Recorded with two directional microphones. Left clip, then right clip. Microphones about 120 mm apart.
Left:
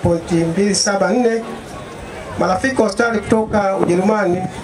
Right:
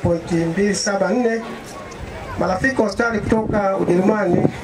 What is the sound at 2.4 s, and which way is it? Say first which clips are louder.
Speech: left 3 dB; 20° left (ahead or behind).